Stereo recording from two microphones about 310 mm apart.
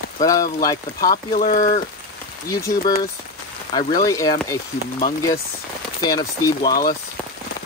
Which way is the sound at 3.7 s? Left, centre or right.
Centre.